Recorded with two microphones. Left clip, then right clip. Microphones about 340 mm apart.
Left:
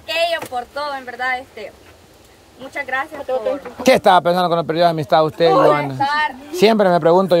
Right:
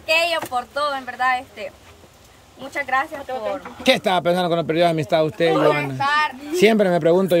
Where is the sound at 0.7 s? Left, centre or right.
Right.